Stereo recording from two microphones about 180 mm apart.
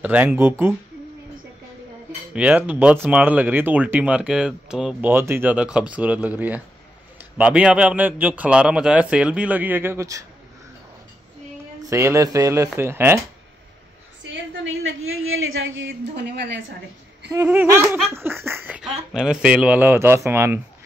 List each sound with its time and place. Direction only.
0.0 s speech: 10° right (ahead or behind)
2.3 s speech: 10° right (ahead or behind)
11.8 s speech: 15° right (ahead or behind)
14.2 s a woman's voice: 85° right
17.3 s speech: 15° right (ahead or behind)